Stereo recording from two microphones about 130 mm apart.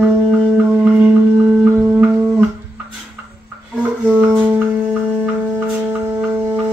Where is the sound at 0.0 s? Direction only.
10° right (ahead or behind).